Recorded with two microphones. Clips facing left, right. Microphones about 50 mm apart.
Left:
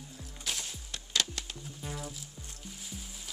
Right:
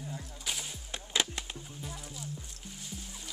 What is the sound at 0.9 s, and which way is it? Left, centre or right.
Music, right.